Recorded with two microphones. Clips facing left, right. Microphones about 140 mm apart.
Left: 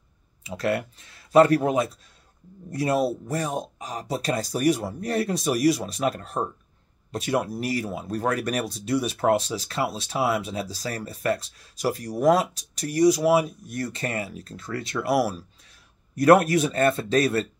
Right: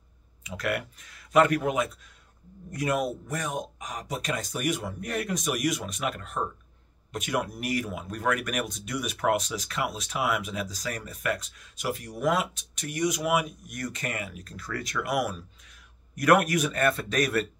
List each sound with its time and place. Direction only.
0.4 s speech: 30° left (ahead or behind)